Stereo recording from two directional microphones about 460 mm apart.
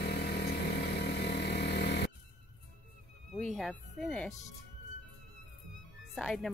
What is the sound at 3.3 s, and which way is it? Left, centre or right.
Music, centre.